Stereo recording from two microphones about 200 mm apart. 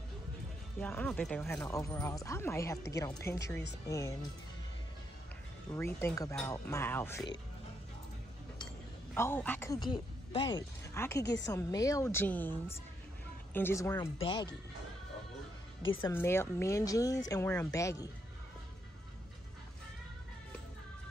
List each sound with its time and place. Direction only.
0.7 s speech: 5° left (ahead or behind)
5.7 s speech: 15° left (ahead or behind)
9.1 s speech: 10° left (ahead or behind)
9.9 s speech: 25° left (ahead or behind)
14.1 s speech: 25° left (ahead or behind)
16.0 s speech: 10° left (ahead or behind)